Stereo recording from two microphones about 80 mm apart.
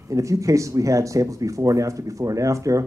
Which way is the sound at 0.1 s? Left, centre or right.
Right.